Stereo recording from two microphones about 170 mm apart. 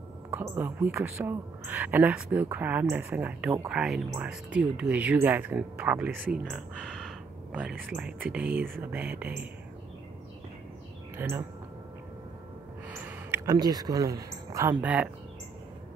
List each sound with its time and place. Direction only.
0.3 s speech: 10° right (ahead or behind)
11.1 s speech: 15° right (ahead or behind)
12.8 s speech: 10° right (ahead or behind)